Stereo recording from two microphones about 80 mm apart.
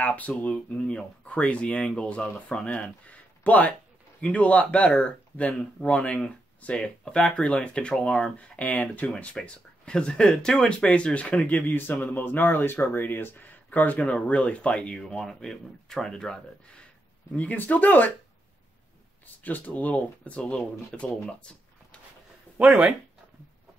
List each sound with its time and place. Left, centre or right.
0.0 s a sound: centre
0.4 s speech: centre
17.4 s speech: centre
19.4 s speech: centre
22.7 s speech: centre